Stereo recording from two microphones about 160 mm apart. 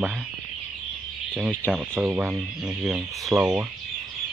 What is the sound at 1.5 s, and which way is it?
Speech, 5° left (ahead or behind).